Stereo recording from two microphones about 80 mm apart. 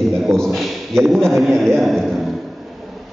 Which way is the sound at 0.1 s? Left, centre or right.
Centre.